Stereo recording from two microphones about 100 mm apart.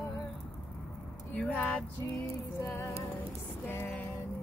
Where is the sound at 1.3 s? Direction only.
15° left (ahead or behind).